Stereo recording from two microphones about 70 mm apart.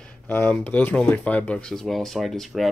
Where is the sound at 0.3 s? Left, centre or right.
Left.